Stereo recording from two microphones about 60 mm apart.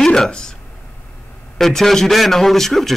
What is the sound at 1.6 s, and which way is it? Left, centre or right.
A man's voice, centre.